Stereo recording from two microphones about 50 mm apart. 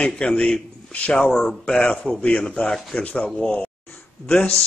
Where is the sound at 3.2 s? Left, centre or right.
Centre.